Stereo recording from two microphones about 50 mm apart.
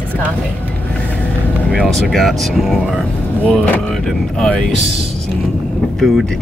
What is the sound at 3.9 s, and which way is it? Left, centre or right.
Speech, centre.